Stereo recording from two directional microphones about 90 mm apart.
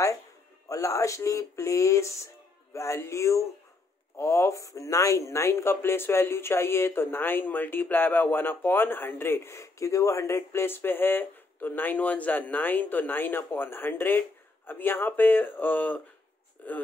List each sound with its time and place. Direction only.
0.7 s speech: 35° left (ahead or behind); by 16.7 s 15° left (ahead or behind)